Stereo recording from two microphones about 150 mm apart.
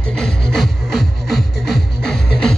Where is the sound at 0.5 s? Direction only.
Centre (ahead or behind).